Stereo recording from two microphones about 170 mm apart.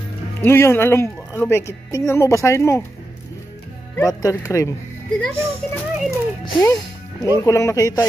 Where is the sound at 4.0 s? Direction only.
20° left (ahead or behind).